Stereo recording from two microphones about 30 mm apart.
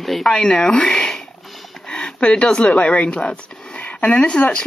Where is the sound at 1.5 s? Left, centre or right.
Centre.